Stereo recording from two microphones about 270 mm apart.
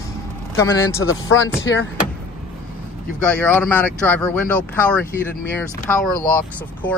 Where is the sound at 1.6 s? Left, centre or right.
Left.